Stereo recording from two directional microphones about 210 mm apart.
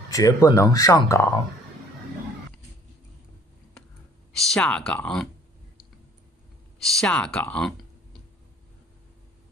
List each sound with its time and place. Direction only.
0.1 s speech: 15° left (ahead or behind)
4.3 s speech: centre (ahead or behind)
6.8 s speech: centre (ahead or behind)